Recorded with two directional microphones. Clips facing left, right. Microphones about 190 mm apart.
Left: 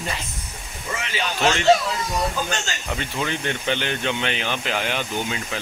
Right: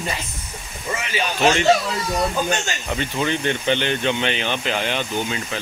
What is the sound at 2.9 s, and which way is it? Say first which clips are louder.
Speech: right 4 dB; centre (ahead or behind).